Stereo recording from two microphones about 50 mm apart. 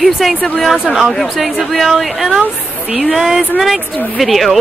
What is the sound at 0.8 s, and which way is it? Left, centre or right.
Speech, centre.